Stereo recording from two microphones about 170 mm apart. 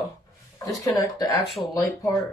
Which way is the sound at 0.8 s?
20° left (ahead or behind).